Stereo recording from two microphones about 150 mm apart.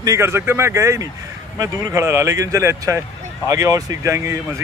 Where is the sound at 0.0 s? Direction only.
20° right (ahead or behind).